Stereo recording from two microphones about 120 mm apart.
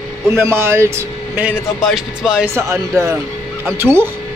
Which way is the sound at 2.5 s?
25° right (ahead or behind).